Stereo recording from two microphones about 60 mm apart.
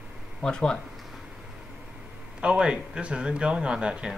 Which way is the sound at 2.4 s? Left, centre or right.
Centre.